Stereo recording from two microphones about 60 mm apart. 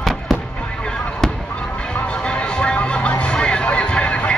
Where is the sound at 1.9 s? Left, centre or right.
Centre.